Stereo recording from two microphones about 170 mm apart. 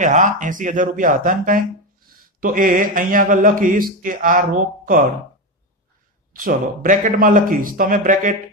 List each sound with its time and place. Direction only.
0.0 s speech: 50° right (ahead or behind)
6.3 s speech: 55° right (ahead or behind)